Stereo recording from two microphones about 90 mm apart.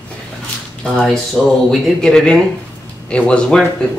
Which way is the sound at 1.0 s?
Centre (ahead or behind).